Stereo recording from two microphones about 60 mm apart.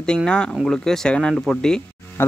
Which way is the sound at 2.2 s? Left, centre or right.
Left.